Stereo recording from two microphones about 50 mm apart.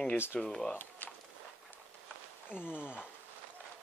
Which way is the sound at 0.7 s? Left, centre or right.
Left.